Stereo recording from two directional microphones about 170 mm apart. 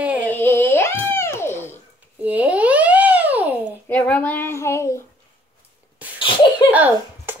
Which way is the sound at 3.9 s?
10° left (ahead or behind).